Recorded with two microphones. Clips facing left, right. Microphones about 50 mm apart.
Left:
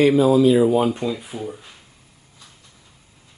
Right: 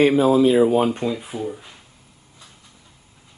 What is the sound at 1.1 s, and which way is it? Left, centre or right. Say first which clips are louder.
Speech: right 2 dB; centre.